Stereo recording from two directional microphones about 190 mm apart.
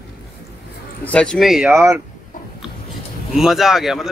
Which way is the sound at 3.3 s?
Centre (ahead or behind).